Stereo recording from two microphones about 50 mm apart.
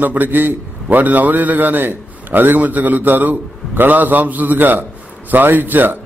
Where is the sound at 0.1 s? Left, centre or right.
Right.